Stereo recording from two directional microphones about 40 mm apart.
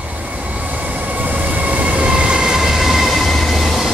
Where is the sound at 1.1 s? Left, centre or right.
Right.